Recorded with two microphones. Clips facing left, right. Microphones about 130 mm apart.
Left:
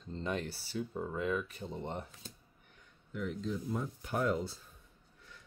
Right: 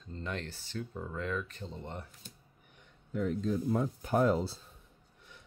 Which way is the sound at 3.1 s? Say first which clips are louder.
Right 5 dB; 40° right (ahead or behind).